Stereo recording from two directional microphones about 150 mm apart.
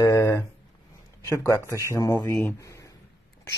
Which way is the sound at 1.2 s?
20° left (ahead or behind).